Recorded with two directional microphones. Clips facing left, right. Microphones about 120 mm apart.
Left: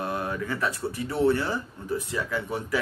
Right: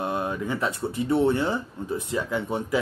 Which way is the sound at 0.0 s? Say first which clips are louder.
Right 2 dB; 20° right (ahead or behind).